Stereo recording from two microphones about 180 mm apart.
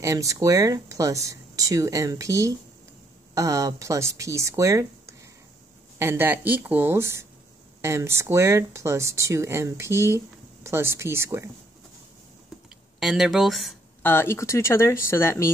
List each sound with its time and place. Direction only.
0.0 s speech: 20° right (ahead or behind)
13.0 s speech: centre (ahead or behind)
14.0 s speech: 15° left (ahead or behind)